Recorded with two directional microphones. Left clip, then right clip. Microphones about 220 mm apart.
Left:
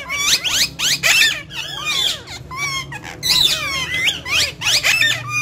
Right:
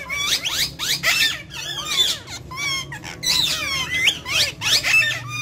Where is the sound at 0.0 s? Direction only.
10° left (ahead or behind).